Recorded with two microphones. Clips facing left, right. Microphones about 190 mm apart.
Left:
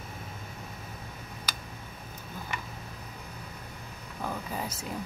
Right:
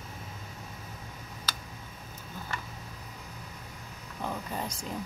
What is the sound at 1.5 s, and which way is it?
Tick, 10° left (ahead or behind).